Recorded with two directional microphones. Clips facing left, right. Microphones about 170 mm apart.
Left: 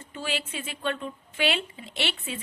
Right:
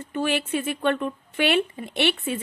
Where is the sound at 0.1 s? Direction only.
55° right (ahead or behind).